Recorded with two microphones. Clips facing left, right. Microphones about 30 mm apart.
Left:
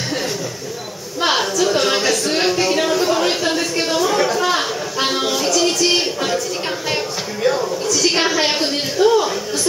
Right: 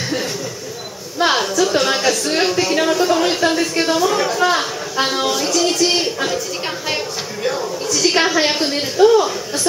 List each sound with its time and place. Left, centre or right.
1.2 s a sound: centre
5.6 s a woman's voice: centre
7.8 s a woman's voice: centre